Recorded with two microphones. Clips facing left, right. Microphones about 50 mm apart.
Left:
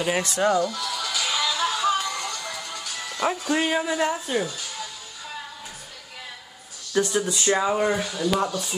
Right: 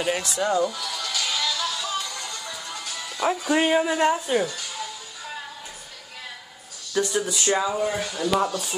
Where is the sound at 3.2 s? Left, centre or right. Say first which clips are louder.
Right 1 dB; centre.